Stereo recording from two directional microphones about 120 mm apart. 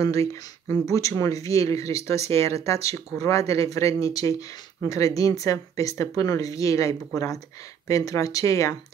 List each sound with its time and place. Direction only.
0.0 s speech: 25° left (ahead or behind)